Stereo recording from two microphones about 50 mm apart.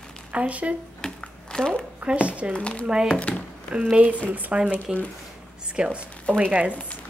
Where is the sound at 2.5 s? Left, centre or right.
Left.